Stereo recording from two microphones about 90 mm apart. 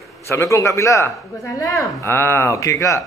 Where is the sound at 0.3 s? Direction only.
30° left (ahead or behind).